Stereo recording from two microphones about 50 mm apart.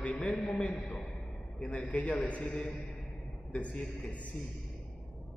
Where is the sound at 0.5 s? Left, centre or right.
Left.